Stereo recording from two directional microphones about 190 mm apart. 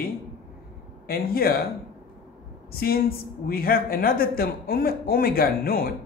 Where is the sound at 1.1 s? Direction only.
50° left (ahead or behind).